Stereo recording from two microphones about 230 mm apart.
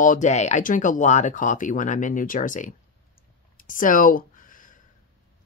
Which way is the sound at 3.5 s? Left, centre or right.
Left.